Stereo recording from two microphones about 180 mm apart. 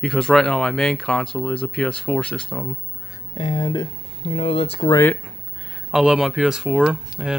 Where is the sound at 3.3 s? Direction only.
25° left (ahead or behind).